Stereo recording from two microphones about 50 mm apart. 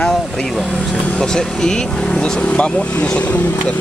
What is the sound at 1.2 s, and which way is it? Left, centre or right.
Speech, centre.